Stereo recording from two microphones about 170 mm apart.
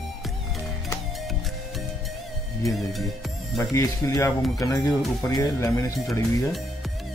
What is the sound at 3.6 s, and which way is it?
Speech, 20° left (ahead or behind).